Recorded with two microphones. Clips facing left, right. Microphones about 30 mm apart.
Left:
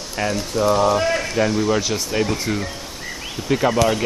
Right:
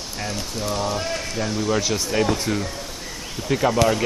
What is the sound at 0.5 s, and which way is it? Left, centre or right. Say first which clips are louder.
Speech: left 9 dB; centre.